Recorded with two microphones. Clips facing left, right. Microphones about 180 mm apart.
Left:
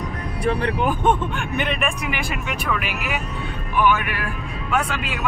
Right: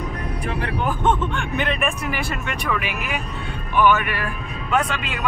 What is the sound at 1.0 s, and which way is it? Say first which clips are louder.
Speech: even; 5° left (ahead or behind).